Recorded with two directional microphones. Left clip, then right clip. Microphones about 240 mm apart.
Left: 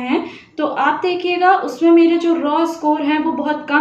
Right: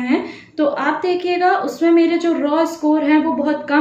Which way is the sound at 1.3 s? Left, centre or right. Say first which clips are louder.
Left 4 dB; centre.